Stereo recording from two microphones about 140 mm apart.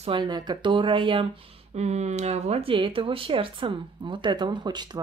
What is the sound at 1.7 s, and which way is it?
A woman's voice, 55° right (ahead or behind).